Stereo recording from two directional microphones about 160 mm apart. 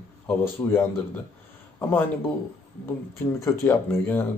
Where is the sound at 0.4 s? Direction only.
15° left (ahead or behind).